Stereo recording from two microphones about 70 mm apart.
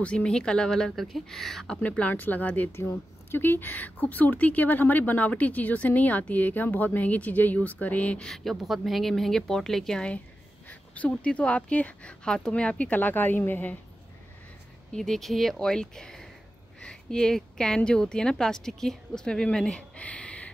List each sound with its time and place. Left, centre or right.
0.0 s speech: centre
1.8 s speech: centre
2.8 s speech: left; by 8.3 s centre
8.3 s speech: centre
10.7 s speech: centre
14.9 s speech: centre